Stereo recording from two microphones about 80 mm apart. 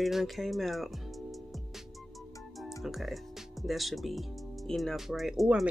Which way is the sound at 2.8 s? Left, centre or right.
Centre.